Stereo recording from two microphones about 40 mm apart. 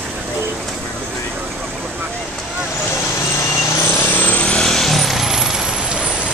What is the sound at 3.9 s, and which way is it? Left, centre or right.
Vehicle, left.